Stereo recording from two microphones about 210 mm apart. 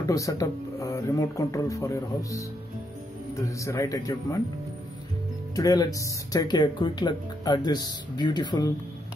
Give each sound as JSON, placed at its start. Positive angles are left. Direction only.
{"t": 0.1, "sound": "speech", "side_deg": 15}
{"t": 5.6, "sound": "speech", "side_deg": 15}